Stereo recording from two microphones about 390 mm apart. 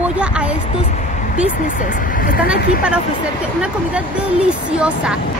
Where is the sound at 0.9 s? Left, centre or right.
Centre.